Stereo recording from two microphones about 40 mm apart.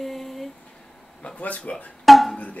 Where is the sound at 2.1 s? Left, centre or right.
Centre.